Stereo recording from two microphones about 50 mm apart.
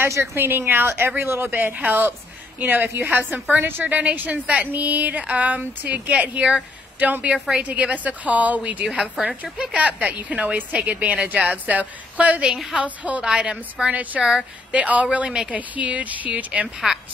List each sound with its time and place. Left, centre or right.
0.0 s a woman's voice: right
1.7 s a woman's voice: right
13.2 s a woman's voice: centre
16.6 s a woman's voice: centre